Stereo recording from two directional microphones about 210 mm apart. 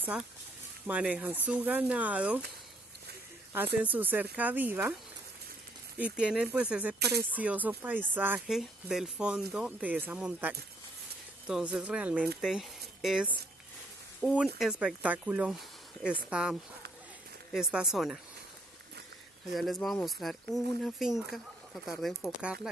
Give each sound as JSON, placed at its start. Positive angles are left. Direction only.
{"t": 0.8, "sound": "speech", "side_deg": -5}
{"t": 3.8, "sound": "speech", "side_deg": -10}
{"t": 5.9, "sound": "speech", "side_deg": -5}
{"t": 7.0, "sound": "music", "side_deg": -50}
{"t": 7.2, "sound": "speech", "side_deg": -5}
{"t": 19.5, "sound": "speech", "side_deg": 0}